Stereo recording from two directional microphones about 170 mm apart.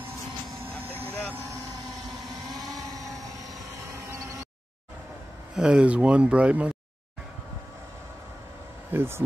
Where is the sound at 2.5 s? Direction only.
20° right (ahead or behind).